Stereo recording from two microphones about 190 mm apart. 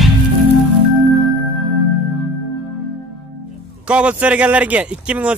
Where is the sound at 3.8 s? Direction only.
5° right (ahead or behind).